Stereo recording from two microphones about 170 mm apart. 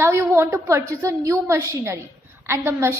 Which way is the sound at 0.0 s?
15° right (ahead or behind).